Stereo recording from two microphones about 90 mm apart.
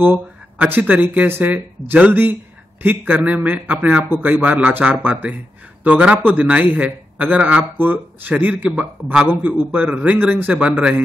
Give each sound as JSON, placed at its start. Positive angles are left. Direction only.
{"t": 0.0, "sound": "a man's voice", "side_deg": -25}